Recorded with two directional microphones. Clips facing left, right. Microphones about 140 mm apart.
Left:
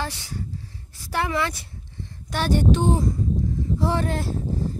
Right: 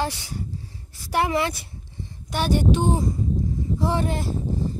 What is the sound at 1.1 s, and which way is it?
Speech, 20° right (ahead or behind).